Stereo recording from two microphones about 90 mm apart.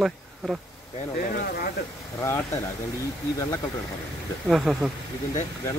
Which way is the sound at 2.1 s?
30° left (ahead or behind).